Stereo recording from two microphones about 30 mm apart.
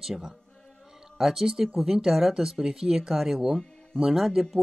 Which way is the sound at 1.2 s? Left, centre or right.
Centre.